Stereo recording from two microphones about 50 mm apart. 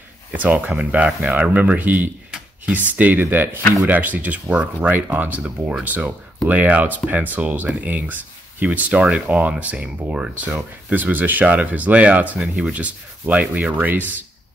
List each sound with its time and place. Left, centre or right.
0.3 s speech: right
5.4 s speech: centre
5.9 s speech: right
10.9 s speech: right
12.4 s speech: centre
13.3 s speech: right